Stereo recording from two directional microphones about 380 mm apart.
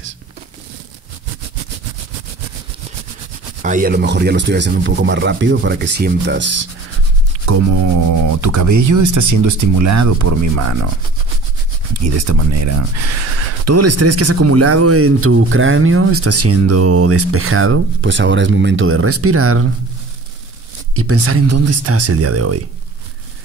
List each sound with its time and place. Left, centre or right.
3.6 s speech: right
8.4 s speech: right
11.9 s speech: right
20.9 s speech: right